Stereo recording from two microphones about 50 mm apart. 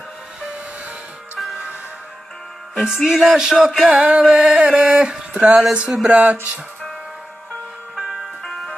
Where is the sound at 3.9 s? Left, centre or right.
Right.